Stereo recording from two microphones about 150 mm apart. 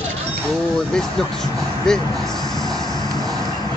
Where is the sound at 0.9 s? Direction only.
5° left (ahead or behind).